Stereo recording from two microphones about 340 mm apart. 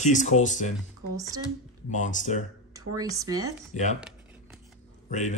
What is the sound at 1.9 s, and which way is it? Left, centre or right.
Speech, left.